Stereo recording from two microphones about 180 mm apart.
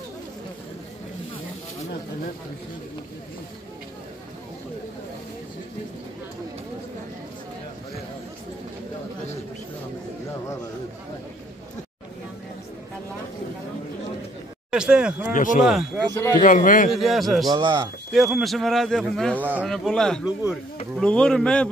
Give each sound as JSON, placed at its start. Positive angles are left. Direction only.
{"t": 14.7, "sound": "speech", "side_deg": -5}
{"t": 15.3, "sound": "a man's voice", "side_deg": 45}
{"t": 15.6, "sound": "speech", "side_deg": 0}
{"t": 16.2, "sound": "speech", "side_deg": 20}
{"t": 16.4, "sound": "a man's voice", "side_deg": 45}
{"t": 16.9, "sound": "speech", "side_deg": 0}
{"t": 17.5, "sound": "speech", "side_deg": -25}
{"t": 18.1, "sound": "speech", "side_deg": 0}
{"t": 19.4, "sound": "speech", "side_deg": -10}
{"t": 19.7, "sound": "speech", "side_deg": 5}